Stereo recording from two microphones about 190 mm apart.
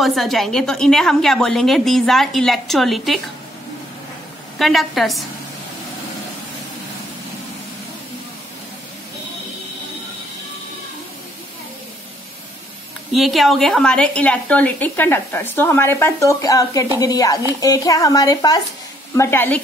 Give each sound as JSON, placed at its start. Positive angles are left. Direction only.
{"t": 0.0, "sound": "a woman's voice", "side_deg": 0}
{"t": 4.6, "sound": "a woman's voice", "side_deg": 0}
{"t": 13.1, "sound": "a woman's voice", "side_deg": 0}